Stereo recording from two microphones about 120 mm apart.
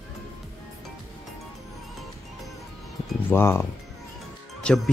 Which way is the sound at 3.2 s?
20° left (ahead or behind).